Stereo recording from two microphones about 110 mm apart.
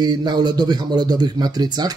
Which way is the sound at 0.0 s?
40° right (ahead or behind).